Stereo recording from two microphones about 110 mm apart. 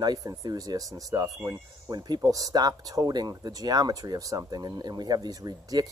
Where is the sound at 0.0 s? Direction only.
35° right (ahead or behind).